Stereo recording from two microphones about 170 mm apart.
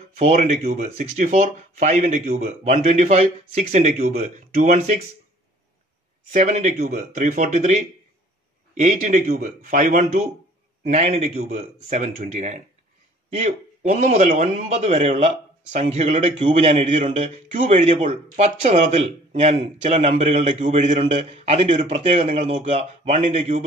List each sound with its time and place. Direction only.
0.1 s speech: 45° right (ahead or behind)
6.3 s speech: 45° right (ahead or behind)
17.8 s speech: 35° right (ahead or behind)